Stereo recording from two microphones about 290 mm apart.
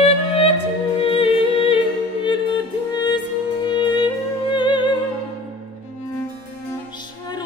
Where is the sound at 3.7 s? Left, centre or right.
Centre.